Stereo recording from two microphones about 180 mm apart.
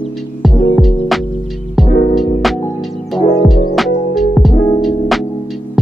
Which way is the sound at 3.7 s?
Centre (ahead or behind).